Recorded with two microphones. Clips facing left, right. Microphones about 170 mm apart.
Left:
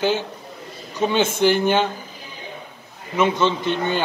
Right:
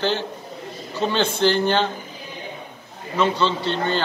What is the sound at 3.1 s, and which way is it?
Speech, 20° left (ahead or behind).